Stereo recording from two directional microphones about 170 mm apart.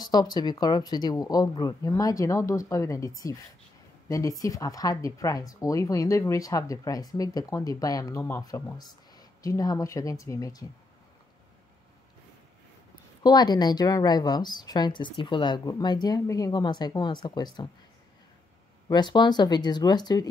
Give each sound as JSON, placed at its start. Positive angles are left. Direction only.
{"t": 0.0, "sound": "speech", "side_deg": 25}
{"t": 4.1, "sound": "speech", "side_deg": 20}
{"t": 13.2, "sound": "speech", "side_deg": 25}
{"t": 18.9, "sound": "speech", "side_deg": 25}